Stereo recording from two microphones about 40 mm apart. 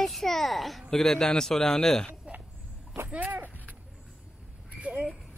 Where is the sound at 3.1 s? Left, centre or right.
Right.